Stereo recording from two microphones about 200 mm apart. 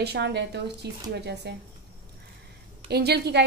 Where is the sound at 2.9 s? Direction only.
55° right (ahead or behind).